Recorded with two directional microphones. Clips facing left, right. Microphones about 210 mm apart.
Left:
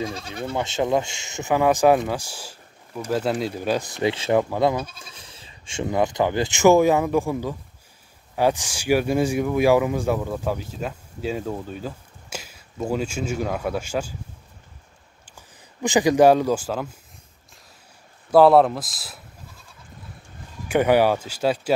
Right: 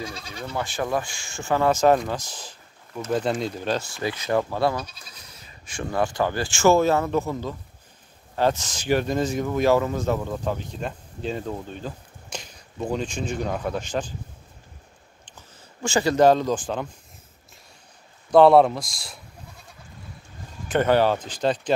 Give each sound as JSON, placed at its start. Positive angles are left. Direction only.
{"t": 0.5, "sound": "speech", "side_deg": 25}
{"t": 4.8, "sound": "speech", "side_deg": 50}
{"t": 5.1, "sound": "speech", "side_deg": 30}
{"t": 15.2, "sound": "speech", "side_deg": 15}
{"t": 18.3, "sound": "speech", "side_deg": 0}
{"t": 20.6, "sound": "speech", "side_deg": 10}